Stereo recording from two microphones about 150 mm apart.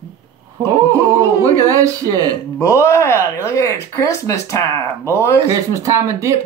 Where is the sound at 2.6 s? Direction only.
20° left (ahead or behind).